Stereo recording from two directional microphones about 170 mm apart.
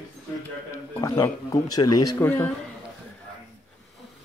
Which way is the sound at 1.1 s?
20° left (ahead or behind).